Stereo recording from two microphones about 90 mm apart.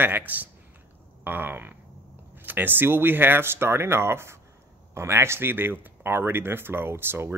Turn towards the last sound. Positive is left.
turn(degrees=-25)  # may be behind; listen again after turning